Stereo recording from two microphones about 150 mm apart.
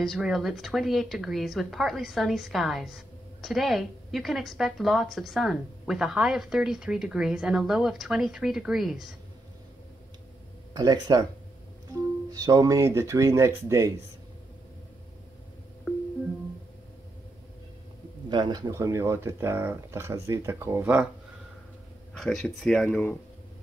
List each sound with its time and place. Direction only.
0.0 s speech: centre (ahead or behind)
10.7 s speech: 25° right (ahead or behind)
12.3 s speech: 25° right (ahead or behind)
15.9 s music: centre (ahead or behind)
18.3 s speech: 25° right (ahead or behind); by 21.1 s 10° right (ahead or behind)
22.1 s speech: centre (ahead or behind)